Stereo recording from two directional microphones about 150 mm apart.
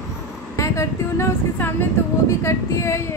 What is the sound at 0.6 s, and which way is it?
Speech, 20° left (ahead or behind).